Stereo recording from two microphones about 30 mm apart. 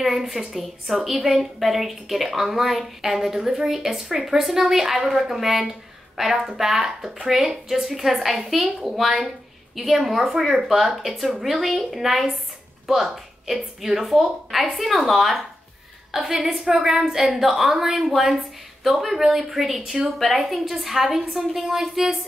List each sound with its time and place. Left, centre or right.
0.0 s a woman's voice: centre
16.3 s a woman's voice: centre
18.1 s a woman's voice: centre